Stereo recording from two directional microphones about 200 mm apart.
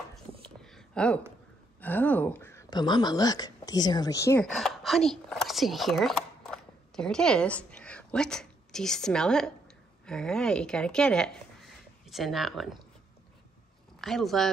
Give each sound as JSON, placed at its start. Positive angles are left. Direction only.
{"t": 0.1, "sound": "a sound", "side_deg": 0}
{"t": 1.8, "sound": "speech", "side_deg": 10}
{"t": 4.5, "sound": "speech", "side_deg": 0}
{"t": 14.0, "sound": "speech", "side_deg": 0}